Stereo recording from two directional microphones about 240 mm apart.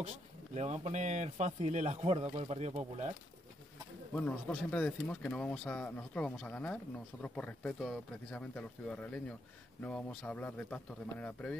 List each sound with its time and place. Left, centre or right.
0.6 s a man's voice: right
4.1 s speech: centre